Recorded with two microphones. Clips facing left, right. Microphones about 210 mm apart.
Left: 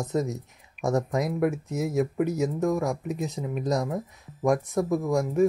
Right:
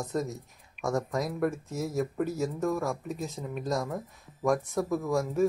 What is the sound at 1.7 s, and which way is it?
Speech, 15° left (ahead or behind).